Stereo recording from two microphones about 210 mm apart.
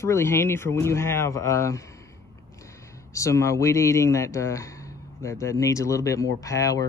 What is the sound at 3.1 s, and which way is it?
Speech, 15° left (ahead or behind).